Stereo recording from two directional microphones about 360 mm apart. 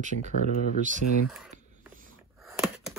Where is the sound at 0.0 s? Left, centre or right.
Centre.